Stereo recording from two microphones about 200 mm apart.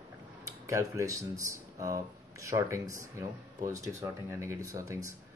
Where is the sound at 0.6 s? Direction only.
15° right (ahead or behind).